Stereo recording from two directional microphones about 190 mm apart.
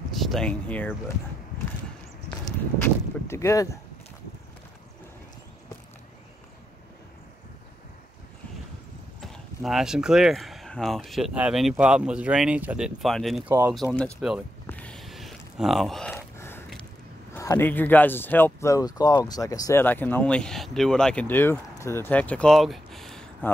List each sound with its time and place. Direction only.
0.1 s speech: centre (ahead or behind)
2.3 s speech: 15° left (ahead or behind)
9.2 s speech: centre (ahead or behind)
13.5 s speech: 10° right (ahead or behind)
13.8 s speech: 5° left (ahead or behind)
14.7 s a sound: 5° left (ahead or behind)
17.3 s speech: 15° left (ahead or behind)